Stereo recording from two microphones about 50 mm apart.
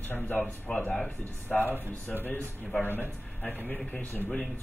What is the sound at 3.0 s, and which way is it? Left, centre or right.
Speech, left.